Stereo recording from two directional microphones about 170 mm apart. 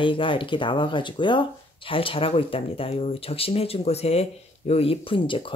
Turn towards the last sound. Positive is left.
turn(degrees=30)  # may be behind; listen again after turning